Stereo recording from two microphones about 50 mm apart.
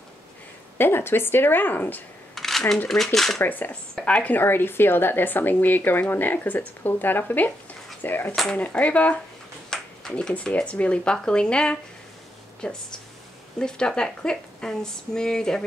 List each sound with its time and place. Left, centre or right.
0.7 s speech: left
2.3 s a sound: centre
2.9 s speech: centre
3.4 s speech: left
3.9 s a woman's voice: left
4.3 s speech: left
8.5 s speech: left
9.7 s a sound: centre
10.1 s speech: centre